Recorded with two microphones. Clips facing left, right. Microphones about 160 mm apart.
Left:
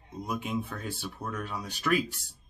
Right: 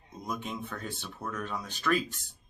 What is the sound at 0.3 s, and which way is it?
Speech, 10° left (ahead or behind).